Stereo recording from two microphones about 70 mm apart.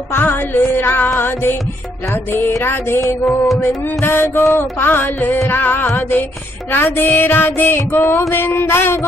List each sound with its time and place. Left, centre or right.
0.1 s music: left
2.6 s music: left